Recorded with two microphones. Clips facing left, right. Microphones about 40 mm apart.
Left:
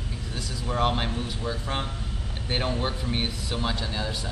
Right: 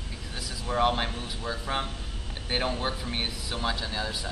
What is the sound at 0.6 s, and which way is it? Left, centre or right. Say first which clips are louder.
A man's voice: even; centre.